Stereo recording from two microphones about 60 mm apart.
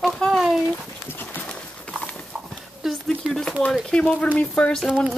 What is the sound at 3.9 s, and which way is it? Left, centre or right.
Speech, centre.